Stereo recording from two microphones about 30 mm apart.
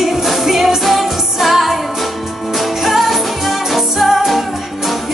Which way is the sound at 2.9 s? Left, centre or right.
Centre.